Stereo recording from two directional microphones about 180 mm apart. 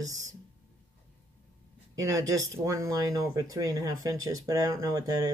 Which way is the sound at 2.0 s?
20° right (ahead or behind).